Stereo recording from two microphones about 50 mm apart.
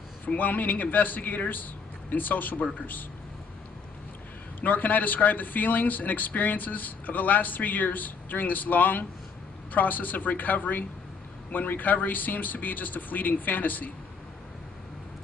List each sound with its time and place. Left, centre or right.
0.4 s speech: left
4.6 s speech: left